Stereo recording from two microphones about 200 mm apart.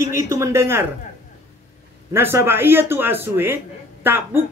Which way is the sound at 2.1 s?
10° right (ahead or behind).